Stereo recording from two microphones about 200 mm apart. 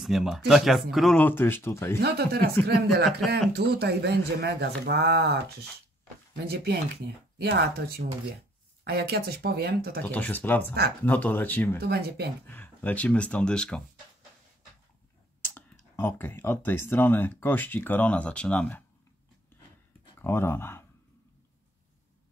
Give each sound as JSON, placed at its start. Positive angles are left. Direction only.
{"t": 0.0, "sound": "speech", "side_deg": 0}
{"t": 2.0, "sound": "speech", "side_deg": -55}
{"t": 6.4, "sound": "speech", "side_deg": -55}
{"t": 10.1, "sound": "speech", "side_deg": 10}
{"t": 11.8, "sound": "speech", "side_deg": -55}
{"t": 12.4, "sound": "speech", "side_deg": 10}
{"t": 15.5, "sound": "speech", "side_deg": 10}
{"t": 20.2, "sound": "speech", "side_deg": 10}